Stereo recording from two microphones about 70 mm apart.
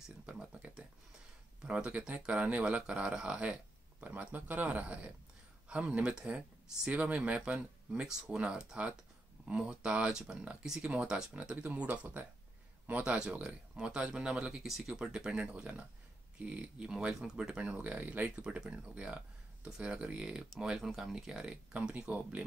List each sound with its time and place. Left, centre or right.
0.0 s speech: centre